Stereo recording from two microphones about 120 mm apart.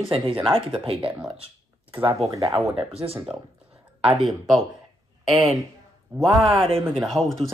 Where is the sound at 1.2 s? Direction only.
50° right (ahead or behind).